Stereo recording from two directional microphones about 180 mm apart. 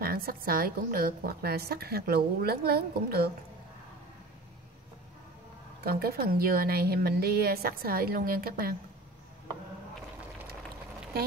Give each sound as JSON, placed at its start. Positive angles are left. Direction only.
{"t": 0.0, "sound": "a woman's voice", "side_deg": -55}
{"t": 5.9, "sound": "a woman's voice", "side_deg": -60}